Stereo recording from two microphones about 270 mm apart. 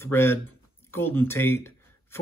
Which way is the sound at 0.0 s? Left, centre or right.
Centre.